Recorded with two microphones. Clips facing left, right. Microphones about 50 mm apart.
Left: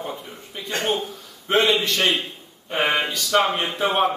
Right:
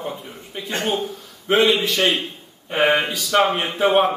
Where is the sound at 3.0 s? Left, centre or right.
Centre.